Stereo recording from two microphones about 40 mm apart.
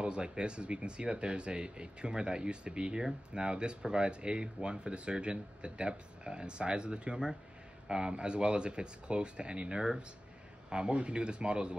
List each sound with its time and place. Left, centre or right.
0.0 s speech: right